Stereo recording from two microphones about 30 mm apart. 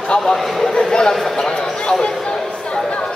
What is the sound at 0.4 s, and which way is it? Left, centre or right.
Speech, centre.